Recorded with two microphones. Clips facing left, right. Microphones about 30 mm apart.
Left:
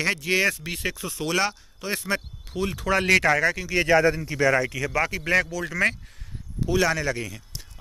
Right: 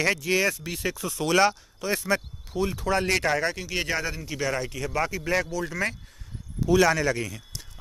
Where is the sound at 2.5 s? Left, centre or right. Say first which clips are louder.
Left 1 dB; left.